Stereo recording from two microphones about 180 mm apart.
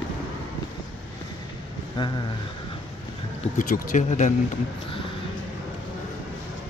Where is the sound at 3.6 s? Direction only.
50° left (ahead or behind).